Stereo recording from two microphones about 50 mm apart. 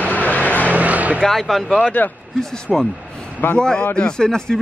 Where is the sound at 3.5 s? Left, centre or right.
Centre.